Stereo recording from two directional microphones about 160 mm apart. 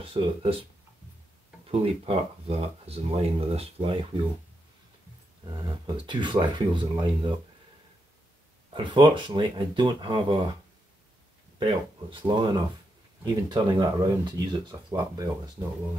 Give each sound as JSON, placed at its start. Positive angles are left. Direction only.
{"t": 0.0, "sound": "speech", "side_deg": -35}
{"t": 1.7, "sound": "speech", "side_deg": -40}
{"t": 5.4, "sound": "speech", "side_deg": -25}
{"t": 8.7, "sound": "speech", "side_deg": -30}
{"t": 11.6, "sound": "speech", "side_deg": -30}